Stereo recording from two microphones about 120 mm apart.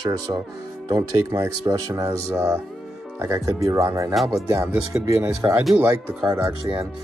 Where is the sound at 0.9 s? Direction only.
25° right (ahead or behind).